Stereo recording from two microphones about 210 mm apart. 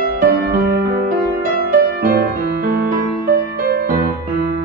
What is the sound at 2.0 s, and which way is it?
Music, 45° right (ahead or behind).